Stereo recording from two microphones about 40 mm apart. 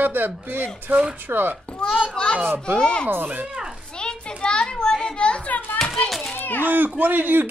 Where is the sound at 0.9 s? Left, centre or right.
Right.